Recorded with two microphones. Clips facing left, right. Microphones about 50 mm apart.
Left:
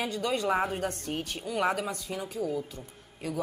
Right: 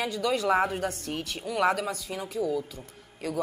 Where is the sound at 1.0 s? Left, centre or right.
Right.